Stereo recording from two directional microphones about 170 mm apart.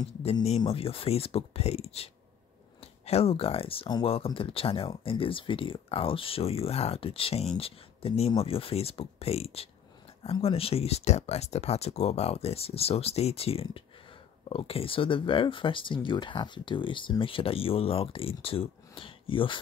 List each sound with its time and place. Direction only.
0.2 s speech: 35° left (ahead or behind)